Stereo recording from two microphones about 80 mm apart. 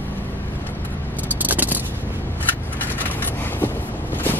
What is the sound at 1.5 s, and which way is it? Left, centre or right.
Vehicle, right.